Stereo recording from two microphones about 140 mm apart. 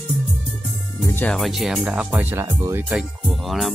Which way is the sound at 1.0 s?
10° left (ahead or behind).